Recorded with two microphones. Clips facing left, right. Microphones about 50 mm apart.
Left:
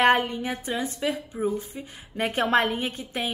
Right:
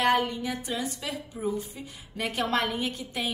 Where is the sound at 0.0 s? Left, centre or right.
Left.